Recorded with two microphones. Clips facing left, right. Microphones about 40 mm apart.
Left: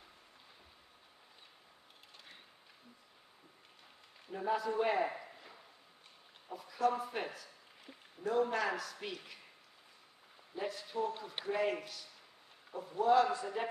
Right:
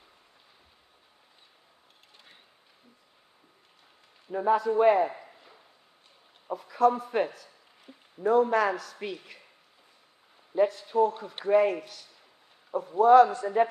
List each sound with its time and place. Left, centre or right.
4.5 s a man's voice: right
5.1 s a sound: centre
6.5 s a man's voice: right
10.5 s a man's voice: right